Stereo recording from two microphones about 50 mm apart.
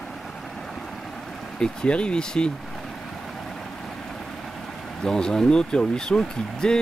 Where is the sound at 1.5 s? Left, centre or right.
Left.